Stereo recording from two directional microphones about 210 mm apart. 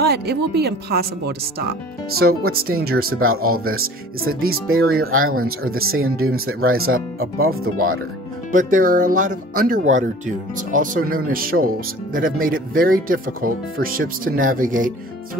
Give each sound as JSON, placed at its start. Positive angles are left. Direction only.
{"t": 0.0, "sound": "speech", "side_deg": -50}
{"t": 3.2, "sound": "speech", "side_deg": -85}
{"t": 8.5, "sound": "speech", "side_deg": -40}